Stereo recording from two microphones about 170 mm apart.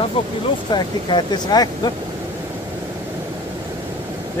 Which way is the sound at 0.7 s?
25° left (ahead or behind).